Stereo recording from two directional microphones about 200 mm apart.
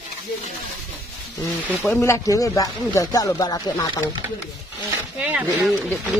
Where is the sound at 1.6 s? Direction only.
Centre (ahead or behind).